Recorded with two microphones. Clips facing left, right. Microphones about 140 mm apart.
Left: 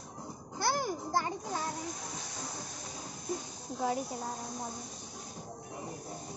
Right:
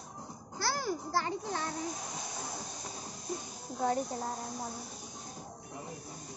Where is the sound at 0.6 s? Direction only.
20° left (ahead or behind).